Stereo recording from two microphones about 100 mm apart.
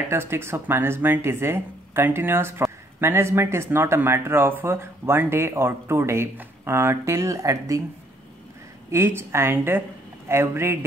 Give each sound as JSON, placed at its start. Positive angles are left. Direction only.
{"t": 0.1, "sound": "speech", "side_deg": -25}
{"t": 8.9, "sound": "speech", "side_deg": -25}